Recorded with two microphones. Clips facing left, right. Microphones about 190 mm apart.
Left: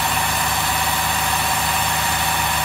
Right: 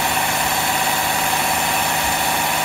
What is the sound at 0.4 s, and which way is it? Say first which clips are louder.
Vehicle: right 2 dB; 15° right (ahead or behind).